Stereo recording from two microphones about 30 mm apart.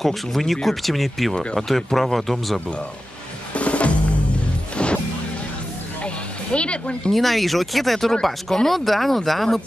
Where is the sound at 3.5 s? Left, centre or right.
Left.